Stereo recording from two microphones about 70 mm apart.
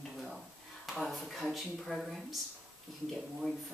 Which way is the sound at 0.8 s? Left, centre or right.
Centre.